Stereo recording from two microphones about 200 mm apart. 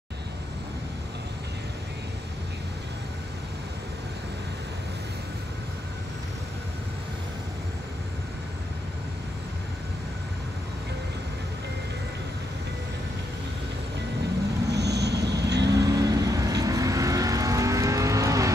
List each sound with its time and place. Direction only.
14.7 s vehicle: 55° right (ahead or behind)
15.7 s vehicle: 15° right (ahead or behind)